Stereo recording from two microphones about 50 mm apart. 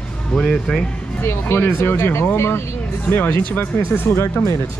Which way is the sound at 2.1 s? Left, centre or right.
Left.